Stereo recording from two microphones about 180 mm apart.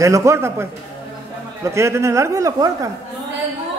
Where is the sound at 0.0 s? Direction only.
15° right (ahead or behind).